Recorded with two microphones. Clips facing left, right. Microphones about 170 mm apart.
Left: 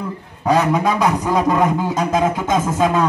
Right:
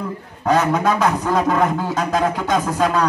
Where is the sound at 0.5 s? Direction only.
10° left (ahead or behind).